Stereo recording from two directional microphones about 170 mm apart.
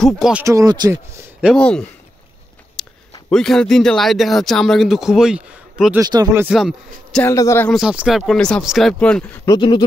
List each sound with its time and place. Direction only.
0.0 s speech: centre (ahead or behind)
0.4 s speech: 20° right (ahead or behind)
1.4 s speech: 5° left (ahead or behind)
2.8 s a sound: centre (ahead or behind)
3.3 s speech: 5° left (ahead or behind)
5.9 s speech: 20° right (ahead or behind)
6.4 s speech: centre (ahead or behind)
7.2 s a man's voice: 15° left (ahead or behind)
7.7 s speech: 5° right (ahead or behind)
9.5 s a sound: 25° left (ahead or behind)